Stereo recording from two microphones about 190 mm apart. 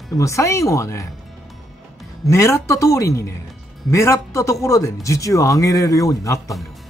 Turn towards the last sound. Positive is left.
turn(degrees=15)  # may be behind; listen again after turning